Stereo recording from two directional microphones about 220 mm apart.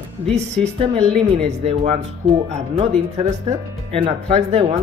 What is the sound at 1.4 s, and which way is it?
Speech, 30° right (ahead or behind).